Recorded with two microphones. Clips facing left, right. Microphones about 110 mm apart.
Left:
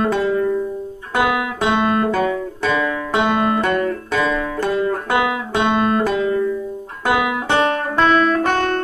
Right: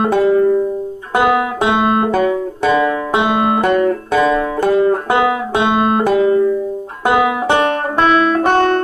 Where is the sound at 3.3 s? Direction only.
10° right (ahead or behind).